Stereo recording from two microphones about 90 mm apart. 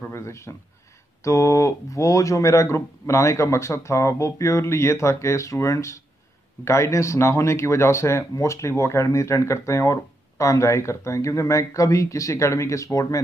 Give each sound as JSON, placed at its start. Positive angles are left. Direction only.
{"t": 0.1, "sound": "speech", "side_deg": 30}